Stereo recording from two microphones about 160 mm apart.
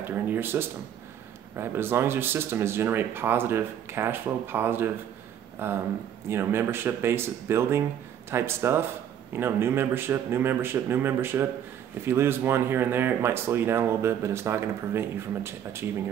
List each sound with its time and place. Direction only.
0.0 s speech: 15° right (ahead or behind)